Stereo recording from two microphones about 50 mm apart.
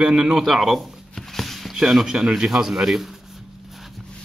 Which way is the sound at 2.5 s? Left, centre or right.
Centre.